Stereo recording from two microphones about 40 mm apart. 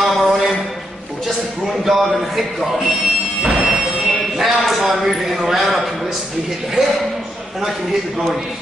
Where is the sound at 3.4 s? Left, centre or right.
Right.